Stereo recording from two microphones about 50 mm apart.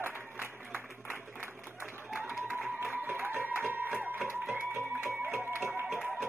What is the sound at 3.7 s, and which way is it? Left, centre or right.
Music, right.